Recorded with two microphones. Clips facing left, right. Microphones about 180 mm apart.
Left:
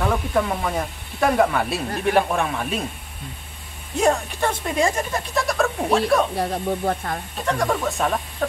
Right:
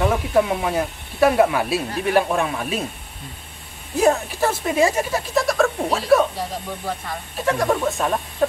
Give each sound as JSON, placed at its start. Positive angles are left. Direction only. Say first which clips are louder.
{"t": 0.3, "sound": "speech", "louder": "right 3 dB", "side_deg": -5}
{"t": 3.9, "sound": "speech", "louder": "right 2 dB", "side_deg": -5}
{"t": 6.3, "sound": "speech", "louder": "left 5 dB", "side_deg": 60}
{"t": 7.4, "sound": "speech", "louder": "right 3 dB", "side_deg": -5}